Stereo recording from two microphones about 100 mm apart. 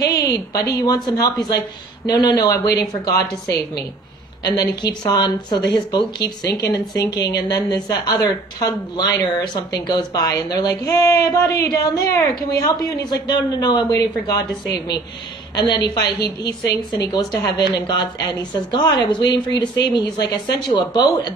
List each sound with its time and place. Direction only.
0.1 s a woman's voice: 40° left (ahead or behind)
4.6 s a woman's voice: 45° left (ahead or behind)
15.5 s speech: 45° left (ahead or behind)